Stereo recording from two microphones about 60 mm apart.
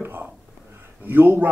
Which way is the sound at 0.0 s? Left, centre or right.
Right.